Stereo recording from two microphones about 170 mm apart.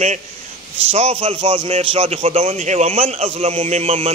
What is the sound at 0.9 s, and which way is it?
A man's voice, 35° right (ahead or behind).